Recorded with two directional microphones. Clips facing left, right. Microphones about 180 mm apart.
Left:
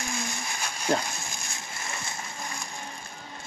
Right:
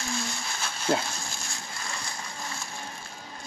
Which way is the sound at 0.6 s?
15° left (ahead or behind).